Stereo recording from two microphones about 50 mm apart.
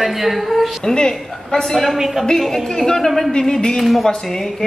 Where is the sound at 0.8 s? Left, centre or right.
Centre.